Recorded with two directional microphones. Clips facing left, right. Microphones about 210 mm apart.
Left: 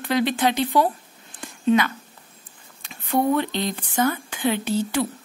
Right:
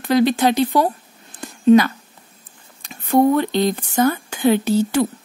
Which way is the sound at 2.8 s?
40° right (ahead or behind).